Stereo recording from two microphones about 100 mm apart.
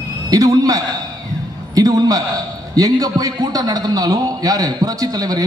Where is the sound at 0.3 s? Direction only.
40° right (ahead or behind).